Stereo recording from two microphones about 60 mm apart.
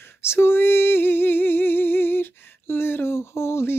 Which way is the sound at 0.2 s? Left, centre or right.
Left.